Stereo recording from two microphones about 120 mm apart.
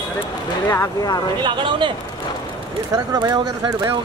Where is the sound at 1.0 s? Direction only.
35° left (ahead or behind).